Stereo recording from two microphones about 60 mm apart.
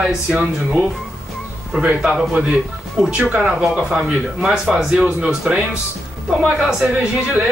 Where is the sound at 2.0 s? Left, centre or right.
Centre.